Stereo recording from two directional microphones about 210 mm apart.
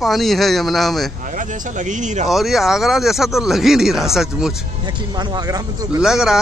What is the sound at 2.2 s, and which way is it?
Speech, centre (ahead or behind).